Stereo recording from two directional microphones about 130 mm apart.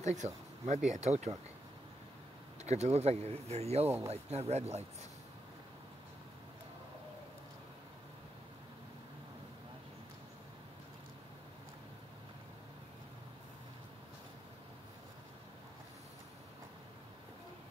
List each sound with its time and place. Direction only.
0.0 s speech: 60° right (ahead or behind)
2.6 s speech: 55° right (ahead or behind)
3.8 s speech: 20° right (ahead or behind)
4.1 s speech: 55° right (ahead or behind)